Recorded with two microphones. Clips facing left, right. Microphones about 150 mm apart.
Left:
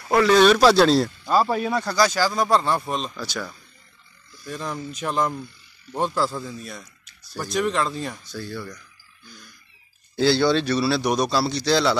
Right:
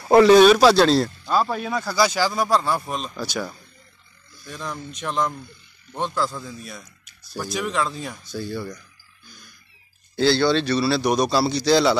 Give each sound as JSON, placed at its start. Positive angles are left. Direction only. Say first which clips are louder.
{"t": 0.0, "sound": "a sound", "louder": "right 6 dB", "side_deg": -30}
{"t": 0.3, "sound": "speech", "louder": "even", "side_deg": -10}
{"t": 3.2, "sound": "speech", "louder": "right 3 dB", "side_deg": -15}
{"t": 4.5, "sound": "speech", "louder": "left 2 dB", "side_deg": 0}
{"t": 8.3, "sound": "speech", "louder": "right 3 dB", "side_deg": -15}
{"t": 10.1, "sound": "speech", "louder": "even", "side_deg": 5}